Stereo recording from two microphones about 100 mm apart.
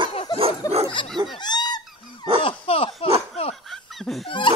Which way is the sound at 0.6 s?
35° left (ahead or behind).